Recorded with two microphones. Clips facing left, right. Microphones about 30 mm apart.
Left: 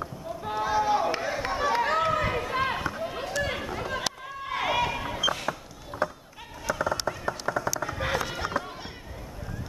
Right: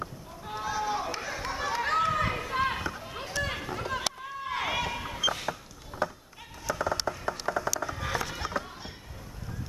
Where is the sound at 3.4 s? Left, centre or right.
Centre.